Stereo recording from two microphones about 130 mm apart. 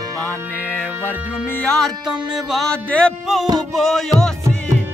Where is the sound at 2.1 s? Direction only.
Centre (ahead or behind).